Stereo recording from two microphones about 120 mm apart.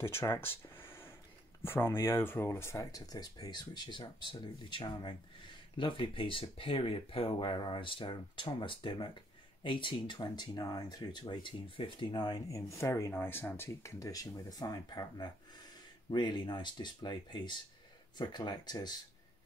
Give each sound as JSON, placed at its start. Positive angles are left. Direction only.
{"t": 0.0, "sound": "a sound", "side_deg": 20}
{"t": 1.6, "sound": "speech", "side_deg": 20}
{"t": 12.1, "sound": "speech", "side_deg": 35}